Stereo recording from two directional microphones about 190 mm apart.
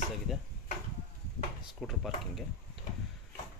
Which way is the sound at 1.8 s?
Centre (ahead or behind).